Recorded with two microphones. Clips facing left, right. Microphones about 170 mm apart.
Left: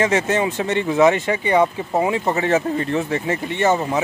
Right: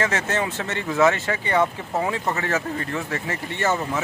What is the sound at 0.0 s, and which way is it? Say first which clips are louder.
Speech: left 6 dB; 15° left (ahead or behind).